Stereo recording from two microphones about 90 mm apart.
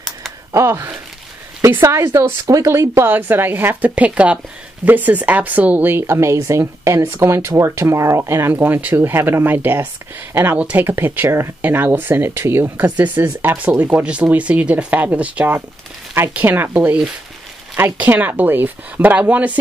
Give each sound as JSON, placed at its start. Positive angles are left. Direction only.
{"t": 0.5, "sound": "speech", "side_deg": -30}